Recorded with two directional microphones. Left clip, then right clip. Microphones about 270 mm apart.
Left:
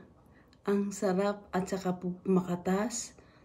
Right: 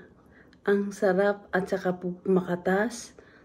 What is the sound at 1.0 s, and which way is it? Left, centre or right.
Speech, centre.